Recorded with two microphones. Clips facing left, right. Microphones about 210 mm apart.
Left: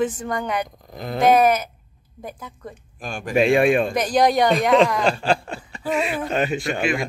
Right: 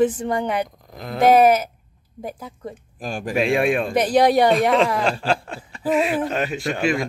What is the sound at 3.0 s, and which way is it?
Speech, 35° right (ahead or behind).